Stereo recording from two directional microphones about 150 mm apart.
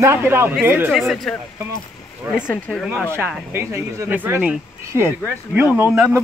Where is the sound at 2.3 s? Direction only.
10° left (ahead or behind).